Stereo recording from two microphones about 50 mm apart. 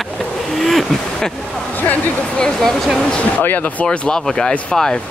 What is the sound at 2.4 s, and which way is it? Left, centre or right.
Speech, centre.